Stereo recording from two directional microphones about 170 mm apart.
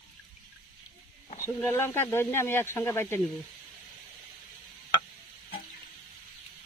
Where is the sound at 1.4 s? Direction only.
15° left (ahead or behind).